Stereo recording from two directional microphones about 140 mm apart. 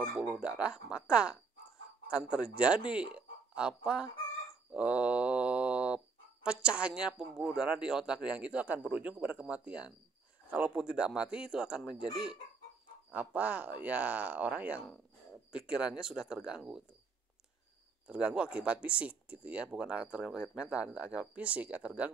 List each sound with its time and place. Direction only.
0.2 s speech: 5° right (ahead or behind)
2.3 s speech: 5° right (ahead or behind)
18.0 s speech: 10° right (ahead or behind)